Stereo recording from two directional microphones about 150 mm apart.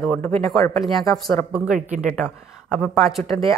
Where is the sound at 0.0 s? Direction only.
10° left (ahead or behind).